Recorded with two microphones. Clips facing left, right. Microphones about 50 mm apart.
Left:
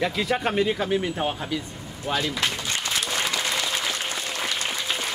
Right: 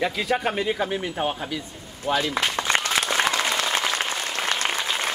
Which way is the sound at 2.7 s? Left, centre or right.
Right.